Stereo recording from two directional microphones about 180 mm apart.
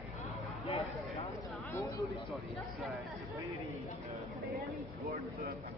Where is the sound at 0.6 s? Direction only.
35° left (ahead or behind).